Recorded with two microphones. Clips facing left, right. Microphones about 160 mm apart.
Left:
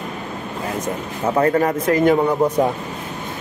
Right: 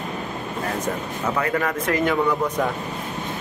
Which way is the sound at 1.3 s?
35° left (ahead or behind).